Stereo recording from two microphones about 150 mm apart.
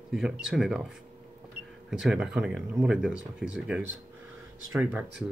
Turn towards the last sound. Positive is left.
turn(degrees=-10)  # may be behind; listen again after turning